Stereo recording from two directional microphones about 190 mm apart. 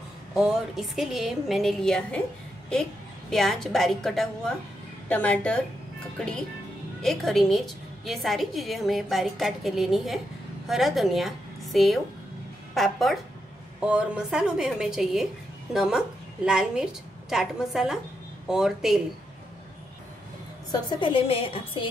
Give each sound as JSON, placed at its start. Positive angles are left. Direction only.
{"t": 0.4, "sound": "a woman's voice", "side_deg": 0}
{"t": 7.0, "sound": "a woman's voice", "side_deg": 0}
{"t": 21.0, "sound": "a woman's voice", "side_deg": 30}